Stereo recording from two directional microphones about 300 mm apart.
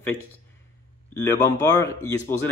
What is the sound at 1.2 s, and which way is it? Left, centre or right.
Speech, centre.